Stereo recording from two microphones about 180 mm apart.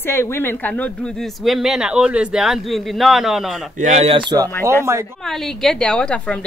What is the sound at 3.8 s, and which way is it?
Speech, 40° right (ahead or behind).